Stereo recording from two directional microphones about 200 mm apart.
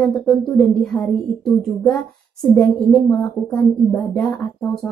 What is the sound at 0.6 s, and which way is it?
Speech, centre (ahead or behind).